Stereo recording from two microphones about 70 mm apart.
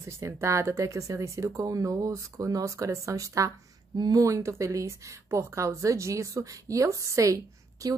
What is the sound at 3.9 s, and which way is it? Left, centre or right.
Speech, right.